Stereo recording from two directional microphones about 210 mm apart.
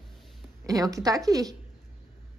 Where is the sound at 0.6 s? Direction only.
15° right (ahead or behind).